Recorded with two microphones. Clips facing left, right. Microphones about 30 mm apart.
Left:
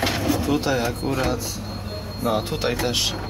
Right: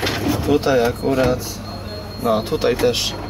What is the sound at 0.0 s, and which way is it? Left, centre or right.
Speech, centre.